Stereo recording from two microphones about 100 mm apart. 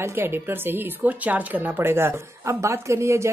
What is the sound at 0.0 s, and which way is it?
A woman's voice, 25° right (ahead or behind).